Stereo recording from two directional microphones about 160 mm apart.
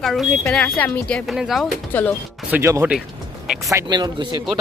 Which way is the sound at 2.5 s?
15° right (ahead or behind).